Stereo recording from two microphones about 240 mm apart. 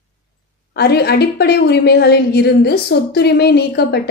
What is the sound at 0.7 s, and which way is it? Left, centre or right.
A woman's voice, left.